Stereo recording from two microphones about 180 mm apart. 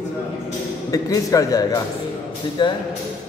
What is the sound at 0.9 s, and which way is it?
Speech, 20° left (ahead or behind).